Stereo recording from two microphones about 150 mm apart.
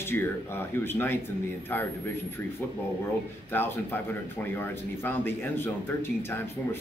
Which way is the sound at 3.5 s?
15° left (ahead or behind).